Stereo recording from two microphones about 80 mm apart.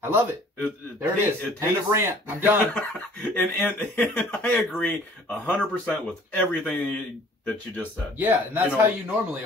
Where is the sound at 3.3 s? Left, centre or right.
Left.